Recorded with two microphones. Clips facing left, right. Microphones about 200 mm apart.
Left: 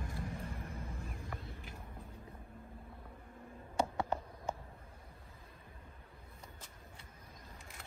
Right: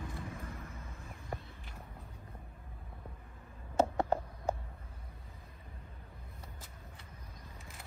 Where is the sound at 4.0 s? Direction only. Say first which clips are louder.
Right 5 dB; 35° right (ahead or behind).